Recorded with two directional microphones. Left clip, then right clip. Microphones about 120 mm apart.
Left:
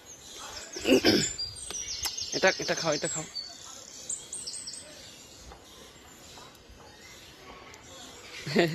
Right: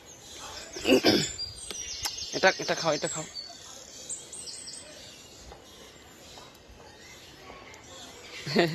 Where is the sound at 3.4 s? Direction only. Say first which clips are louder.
Even; centre (ahead or behind).